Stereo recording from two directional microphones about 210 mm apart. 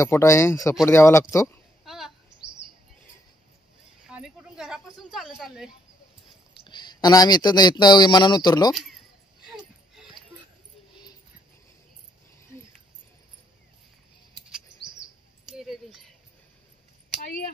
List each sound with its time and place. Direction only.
0.0 s speech: 15° left (ahead or behind)
1.9 s chirp: centre (ahead or behind)
4.1 s speech: 5° right (ahead or behind)
6.6 s speech: 20° left (ahead or behind)
8.7 s a sound: centre (ahead or behind)
15.5 s a sound: centre (ahead or behind)